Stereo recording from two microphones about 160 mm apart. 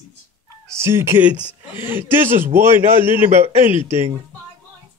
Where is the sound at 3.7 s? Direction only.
35° left (ahead or behind).